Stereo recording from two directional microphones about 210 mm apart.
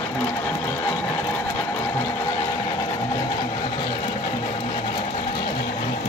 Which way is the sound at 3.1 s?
20° left (ahead or behind).